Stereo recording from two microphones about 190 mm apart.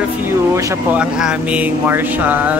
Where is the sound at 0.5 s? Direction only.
15° right (ahead or behind).